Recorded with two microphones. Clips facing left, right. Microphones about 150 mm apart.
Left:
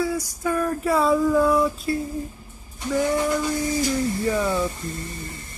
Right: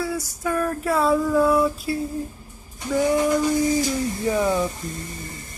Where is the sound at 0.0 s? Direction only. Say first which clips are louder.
Left 2 dB; centre (ahead or behind); by 4.6 s 15° right (ahead or behind).